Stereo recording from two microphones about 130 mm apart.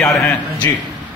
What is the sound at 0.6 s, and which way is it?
Speech, 20° left (ahead or behind).